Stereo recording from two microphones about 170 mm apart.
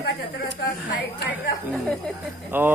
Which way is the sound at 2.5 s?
10° right (ahead or behind).